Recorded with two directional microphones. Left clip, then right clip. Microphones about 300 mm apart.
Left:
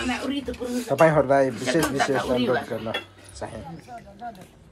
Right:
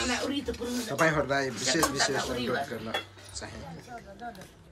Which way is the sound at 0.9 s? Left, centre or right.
Centre.